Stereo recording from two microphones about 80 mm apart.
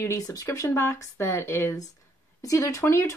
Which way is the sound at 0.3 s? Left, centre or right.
Left.